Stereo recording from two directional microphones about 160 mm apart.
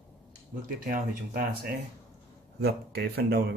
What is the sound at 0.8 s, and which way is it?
Speech, 60° right (ahead or behind).